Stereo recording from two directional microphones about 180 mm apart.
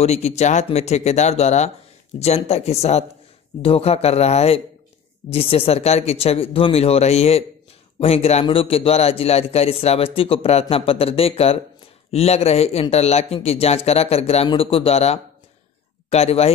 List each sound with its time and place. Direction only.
0.0 s a man's voice: 35° left (ahead or behind)